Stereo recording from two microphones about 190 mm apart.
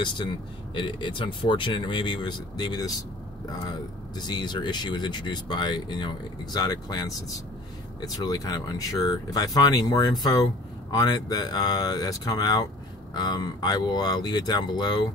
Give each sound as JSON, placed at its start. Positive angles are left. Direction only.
{"t": 0.7, "sound": "speech", "side_deg": 25}
{"t": 4.2, "sound": "speech", "side_deg": 20}